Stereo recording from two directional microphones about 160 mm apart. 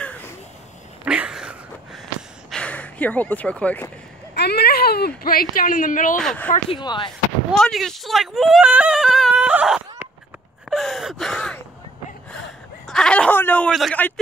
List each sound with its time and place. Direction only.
0.0 s a sound: 10° left (ahead or behind)
1.0 s a sound: 5° right (ahead or behind)
2.5 s speech: 10° left (ahead or behind)
4.4 s speech: 85° left; by 6.2 s 55° left (ahead or behind)
6.2 s speech: 10° left (ahead or behind)
6.7 s speech: 30° left (ahead or behind)
7.5 s speech: 5° left (ahead or behind)
10.7 s gasp: centre (ahead or behind)
12.8 s a sound: 5° left (ahead or behind)
13.7 s a man's voice: centre (ahead or behind)